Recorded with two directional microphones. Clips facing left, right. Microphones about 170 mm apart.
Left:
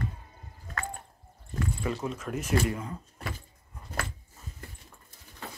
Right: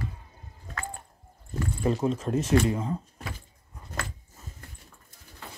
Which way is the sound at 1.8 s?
30° right (ahead or behind).